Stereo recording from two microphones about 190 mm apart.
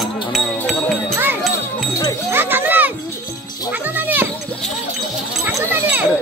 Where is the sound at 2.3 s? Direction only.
10° right (ahead or behind).